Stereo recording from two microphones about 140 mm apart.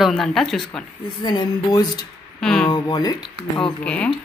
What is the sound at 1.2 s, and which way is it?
Speech, 30° left (ahead or behind).